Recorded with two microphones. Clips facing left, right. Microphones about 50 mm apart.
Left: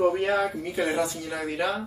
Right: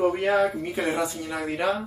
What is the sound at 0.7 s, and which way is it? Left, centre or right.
Speech, right.